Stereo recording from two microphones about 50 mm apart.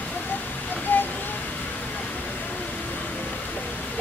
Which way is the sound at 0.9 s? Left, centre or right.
Left.